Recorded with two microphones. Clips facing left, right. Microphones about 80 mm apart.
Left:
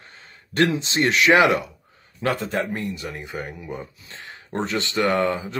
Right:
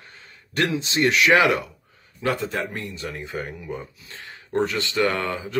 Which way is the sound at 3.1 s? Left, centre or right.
Centre.